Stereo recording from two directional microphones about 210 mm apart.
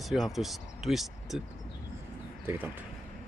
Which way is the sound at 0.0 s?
Centre (ahead or behind).